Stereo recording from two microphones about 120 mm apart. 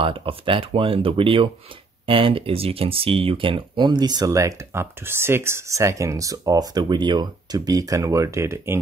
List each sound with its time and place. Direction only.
0.0 s speech: 50° right (ahead or behind); by 8.7 s 25° right (ahead or behind)